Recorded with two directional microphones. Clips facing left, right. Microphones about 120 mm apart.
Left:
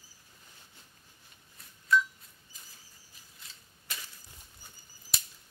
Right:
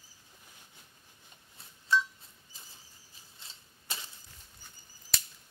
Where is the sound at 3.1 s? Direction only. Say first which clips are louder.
Even; 30° right (ahead or behind).